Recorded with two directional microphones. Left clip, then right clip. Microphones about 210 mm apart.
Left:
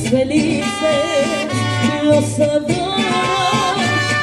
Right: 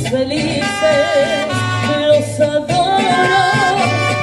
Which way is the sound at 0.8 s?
15° left (ahead or behind).